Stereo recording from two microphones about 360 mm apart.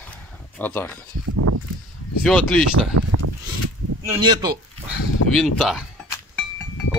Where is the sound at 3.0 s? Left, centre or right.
Right.